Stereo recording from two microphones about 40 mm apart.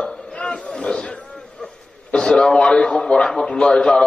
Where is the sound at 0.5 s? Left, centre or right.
Centre.